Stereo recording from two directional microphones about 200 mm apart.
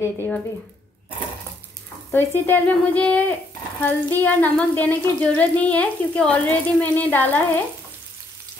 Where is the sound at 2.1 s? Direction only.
10° left (ahead or behind).